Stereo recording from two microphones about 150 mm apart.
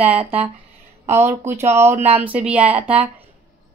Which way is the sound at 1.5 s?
45° right (ahead or behind).